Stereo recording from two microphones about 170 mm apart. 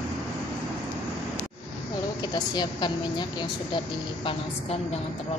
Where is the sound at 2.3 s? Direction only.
25° left (ahead or behind).